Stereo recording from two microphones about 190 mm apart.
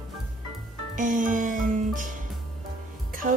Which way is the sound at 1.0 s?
45° right (ahead or behind).